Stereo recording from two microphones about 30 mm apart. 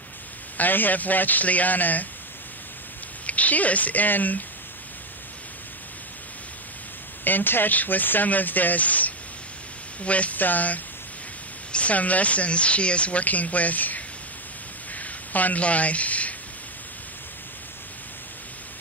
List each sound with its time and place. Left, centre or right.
0.6 s a man's voice: left
3.3 s a woman's voice: left
7.2 s speech: left
10.0 s speech: left
10.3 s a man's voice: left
11.7 s speech: left
13.2 s a woman's voice: left
15.0 s a sound: left
15.6 s speech: left